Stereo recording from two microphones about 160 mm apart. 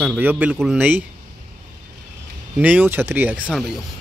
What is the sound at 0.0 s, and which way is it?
Speech, 10° right (ahead or behind).